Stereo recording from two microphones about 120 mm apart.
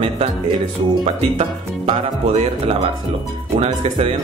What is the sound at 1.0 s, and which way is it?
Speech, 70° right (ahead or behind).